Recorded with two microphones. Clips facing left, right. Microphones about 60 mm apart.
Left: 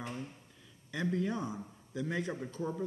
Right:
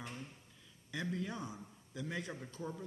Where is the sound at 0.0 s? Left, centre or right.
Centre.